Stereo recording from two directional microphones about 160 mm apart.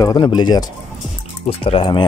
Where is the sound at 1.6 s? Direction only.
35° left (ahead or behind).